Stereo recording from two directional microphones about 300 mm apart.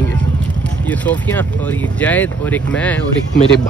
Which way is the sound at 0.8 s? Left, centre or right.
Centre.